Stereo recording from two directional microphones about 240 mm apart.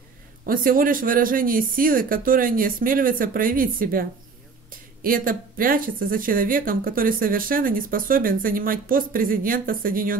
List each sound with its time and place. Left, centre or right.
0.5 s speech: right